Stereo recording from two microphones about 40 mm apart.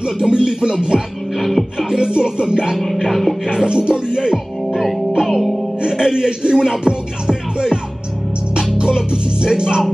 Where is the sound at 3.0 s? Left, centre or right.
Centre.